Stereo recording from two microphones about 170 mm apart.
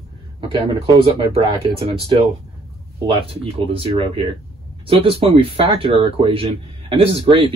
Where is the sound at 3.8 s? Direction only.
35° right (ahead or behind).